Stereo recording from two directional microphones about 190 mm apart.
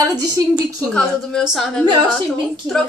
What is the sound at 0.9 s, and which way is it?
Speech, centre (ahead or behind).